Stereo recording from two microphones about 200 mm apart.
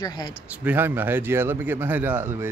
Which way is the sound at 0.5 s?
10° right (ahead or behind).